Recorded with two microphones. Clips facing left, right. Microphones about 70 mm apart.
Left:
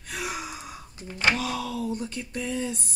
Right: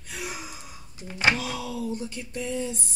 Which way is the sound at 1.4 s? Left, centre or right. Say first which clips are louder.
Left 2 dB; left.